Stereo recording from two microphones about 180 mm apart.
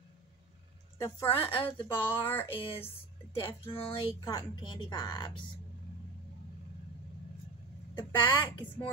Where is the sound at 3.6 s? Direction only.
30° left (ahead or behind).